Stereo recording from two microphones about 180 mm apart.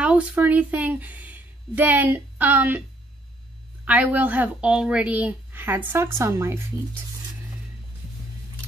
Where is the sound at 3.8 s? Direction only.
10° right (ahead or behind).